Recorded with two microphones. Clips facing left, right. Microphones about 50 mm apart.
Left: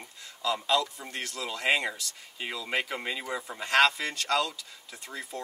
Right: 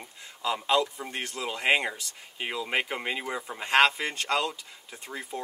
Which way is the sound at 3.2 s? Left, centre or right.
Centre.